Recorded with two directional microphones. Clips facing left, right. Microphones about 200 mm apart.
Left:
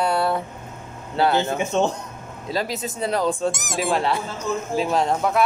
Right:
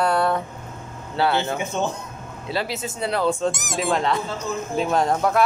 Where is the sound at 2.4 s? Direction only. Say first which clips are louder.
Left 1 dB; 40° left (ahead or behind).